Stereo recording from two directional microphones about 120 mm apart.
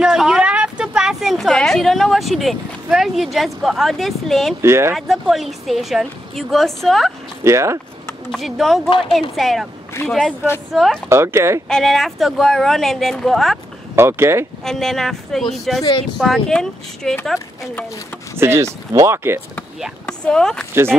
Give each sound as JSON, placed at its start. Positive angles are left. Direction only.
{"t": 0.0, "sound": "a woman's voice", "side_deg": -5}
{"t": 4.6, "sound": "speech", "side_deg": -20}
{"t": 4.9, "sound": "speech", "side_deg": 0}
{"t": 7.4, "sound": "speech", "side_deg": -25}
{"t": 8.3, "sound": "speech", "side_deg": 0}
{"t": 11.1, "sound": "speech", "side_deg": -20}
{"t": 11.7, "sound": "speech", "side_deg": 0}
{"t": 13.9, "sound": "speech", "side_deg": -20}
{"t": 14.6, "sound": "speech", "side_deg": 5}
{"t": 18.4, "sound": "speech", "side_deg": -20}
{"t": 20.1, "sound": "speech", "side_deg": 5}